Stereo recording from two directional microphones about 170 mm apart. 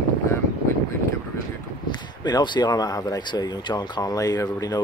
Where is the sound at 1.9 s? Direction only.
25° left (ahead or behind).